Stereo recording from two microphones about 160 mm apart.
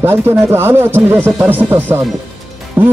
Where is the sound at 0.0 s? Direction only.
15° right (ahead or behind).